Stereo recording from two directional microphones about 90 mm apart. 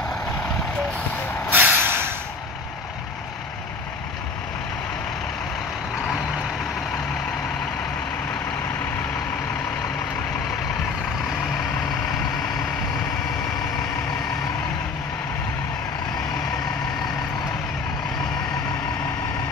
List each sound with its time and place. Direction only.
1.5 s vehicle: 20° right (ahead or behind)